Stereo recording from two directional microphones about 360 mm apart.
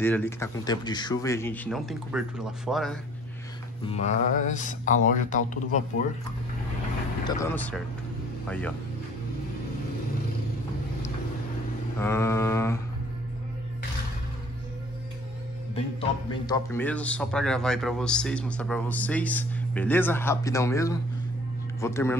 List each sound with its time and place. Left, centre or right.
0.0 s a man's voice: centre
3.8 s speech: centre
7.2 s a man's voice: centre
12.0 s mantra: centre
15.7 s a man's voice: centre
21.8 s mantra: centre